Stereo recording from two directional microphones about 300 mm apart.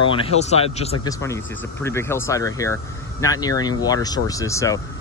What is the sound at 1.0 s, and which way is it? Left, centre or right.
Speech, centre.